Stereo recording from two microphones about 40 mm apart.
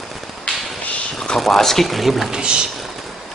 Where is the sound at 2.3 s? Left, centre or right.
Right.